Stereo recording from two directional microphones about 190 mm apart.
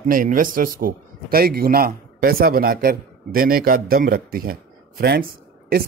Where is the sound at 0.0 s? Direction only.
45° right (ahead or behind).